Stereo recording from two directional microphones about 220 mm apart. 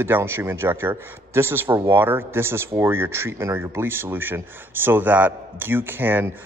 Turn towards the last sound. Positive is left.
turn(degrees=-10)  # may be behind; listen again after turning